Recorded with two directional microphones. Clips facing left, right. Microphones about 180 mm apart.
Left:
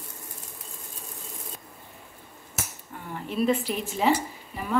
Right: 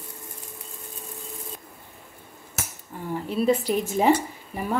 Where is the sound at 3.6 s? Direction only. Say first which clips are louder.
Right 4 dB; 45° right (ahead or behind).